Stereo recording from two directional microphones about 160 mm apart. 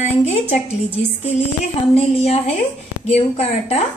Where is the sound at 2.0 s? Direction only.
40° left (ahead or behind).